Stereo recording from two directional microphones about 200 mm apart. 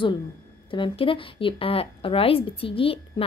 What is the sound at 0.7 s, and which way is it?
A woman's voice, 25° left (ahead or behind).